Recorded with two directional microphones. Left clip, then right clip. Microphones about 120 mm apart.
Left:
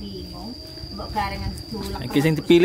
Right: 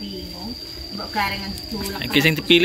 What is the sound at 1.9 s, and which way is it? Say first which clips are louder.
Speech: right 4 dB; 25° left (ahead or behind).